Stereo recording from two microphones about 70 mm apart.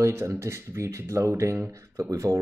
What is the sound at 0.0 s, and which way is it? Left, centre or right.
Speech, right.